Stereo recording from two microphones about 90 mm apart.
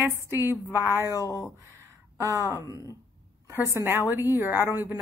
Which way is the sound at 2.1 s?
35° right (ahead or behind).